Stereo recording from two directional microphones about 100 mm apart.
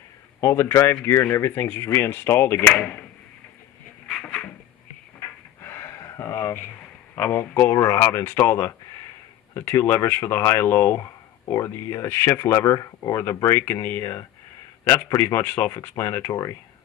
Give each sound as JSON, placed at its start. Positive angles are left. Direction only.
{"t": 0.4, "sound": "speech", "side_deg": 25}
{"t": 5.6, "sound": "a sound", "side_deg": 25}
{"t": 7.2, "sound": "speech", "side_deg": 20}
{"t": 11.0, "sound": "speech", "side_deg": 35}